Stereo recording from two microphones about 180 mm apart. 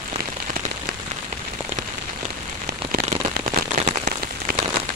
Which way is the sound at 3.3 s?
50° right (ahead or behind).